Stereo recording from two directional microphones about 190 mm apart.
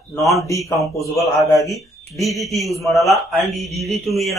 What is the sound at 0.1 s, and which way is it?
Speech, 15° left (ahead or behind).